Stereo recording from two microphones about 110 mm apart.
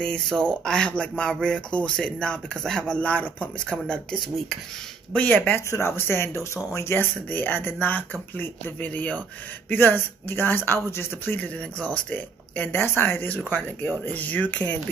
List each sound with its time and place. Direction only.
0.0 s speech: 5° left (ahead or behind)